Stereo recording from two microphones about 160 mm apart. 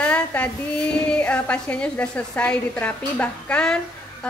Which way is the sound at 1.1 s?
10° left (ahead or behind).